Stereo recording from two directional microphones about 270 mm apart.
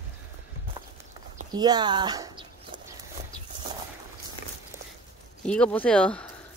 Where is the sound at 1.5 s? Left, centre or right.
Centre.